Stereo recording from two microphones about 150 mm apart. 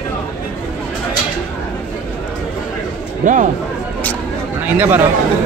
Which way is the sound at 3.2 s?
60° right (ahead or behind).